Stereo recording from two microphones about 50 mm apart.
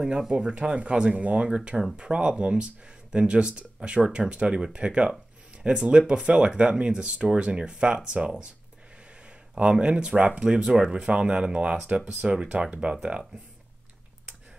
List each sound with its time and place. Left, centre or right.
0.3 s speech: right
9.6 s speech: right